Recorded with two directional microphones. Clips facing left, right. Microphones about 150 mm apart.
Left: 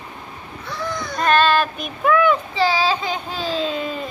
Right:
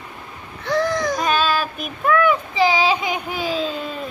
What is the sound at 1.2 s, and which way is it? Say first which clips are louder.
Child singing: left 9 dB; 5° right (ahead or behind).